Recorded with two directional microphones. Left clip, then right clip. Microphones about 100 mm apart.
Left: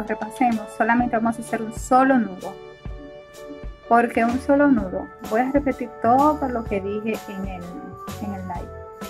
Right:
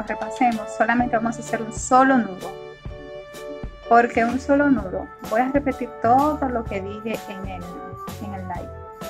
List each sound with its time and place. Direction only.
0.0 s speech: 15° left (ahead or behind)
1.1 s speech: centre (ahead or behind)
1.9 s speech: 30° left (ahead or behind)
3.9 s speech: 20° left (ahead or behind)
4.5 s speech: centre (ahead or behind)
4.7 s speech: 15° left (ahead or behind)
8.2 s music: 15° left (ahead or behind)